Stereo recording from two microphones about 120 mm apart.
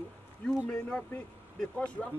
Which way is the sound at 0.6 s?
10° left (ahead or behind).